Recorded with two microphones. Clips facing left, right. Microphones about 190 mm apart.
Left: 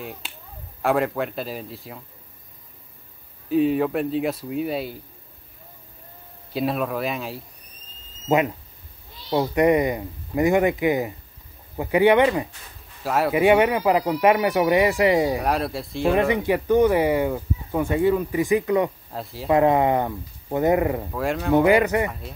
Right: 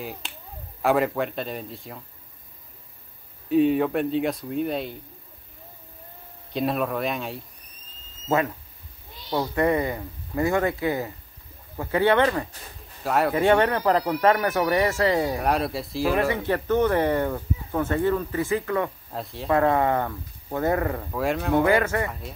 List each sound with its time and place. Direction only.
0.0 s speech: centre (ahead or behind)
3.4 s speech: centre (ahead or behind)
6.5 s speech: centre (ahead or behind)
8.3 s speech: 15° left (ahead or behind)
13.0 s speech: centre (ahead or behind)
13.3 s speech: 15° left (ahead or behind)
15.4 s speech: centre (ahead or behind)
16.2 s speech: 15° left (ahead or behind)
19.1 s speech: centre (ahead or behind)
19.5 s speech: 15° left (ahead or behind)
21.1 s speech: centre (ahead or behind)
21.6 s speech: 15° left (ahead or behind)